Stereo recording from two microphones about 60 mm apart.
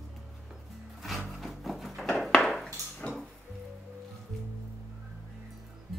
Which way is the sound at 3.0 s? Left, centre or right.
Left.